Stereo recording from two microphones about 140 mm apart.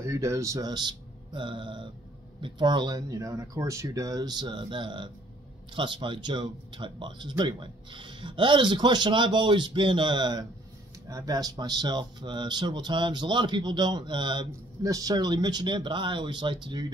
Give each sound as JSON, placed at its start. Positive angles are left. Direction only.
{"t": 0.0, "sound": "speech", "side_deg": -20}